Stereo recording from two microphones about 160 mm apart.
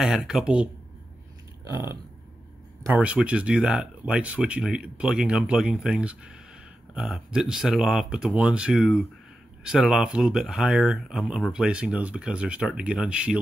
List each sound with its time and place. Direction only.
0.0 s speech: centre (ahead or behind)
1.6 s a sound: 20° right (ahead or behind)
2.8 s speech: 10° right (ahead or behind)